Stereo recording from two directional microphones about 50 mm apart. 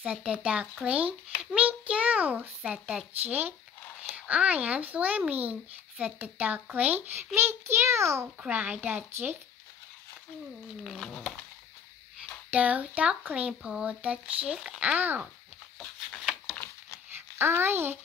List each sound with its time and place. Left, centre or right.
0.0 s speech: centre
2.6 s speech: centre
3.1 s speech: right
4.1 s speech: right
7.3 s a child's voice: right
8.5 s a child's voice: right
10.8 s speech: centre
12.4 s speech: right
14.8 s speech: right
17.4 s a child's voice: right